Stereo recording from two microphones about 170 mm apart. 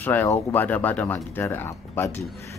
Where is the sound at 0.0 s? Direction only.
10° left (ahead or behind).